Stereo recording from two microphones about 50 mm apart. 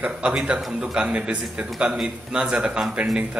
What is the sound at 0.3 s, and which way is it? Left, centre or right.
Speech, centre.